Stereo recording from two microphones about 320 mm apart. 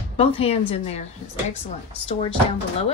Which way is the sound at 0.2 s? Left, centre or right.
Centre.